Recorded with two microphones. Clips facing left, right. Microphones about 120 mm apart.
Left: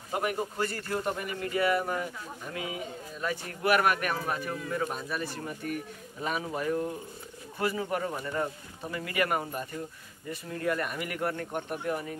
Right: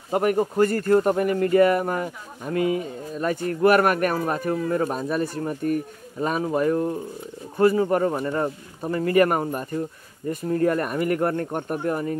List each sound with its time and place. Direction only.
0.1 s a man's voice: 50° right (ahead or behind)